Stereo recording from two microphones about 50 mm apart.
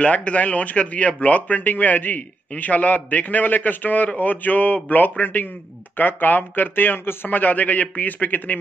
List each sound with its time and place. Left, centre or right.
0.0 s speech: left